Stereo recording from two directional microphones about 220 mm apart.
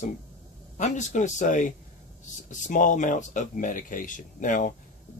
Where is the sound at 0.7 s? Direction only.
35° left (ahead or behind).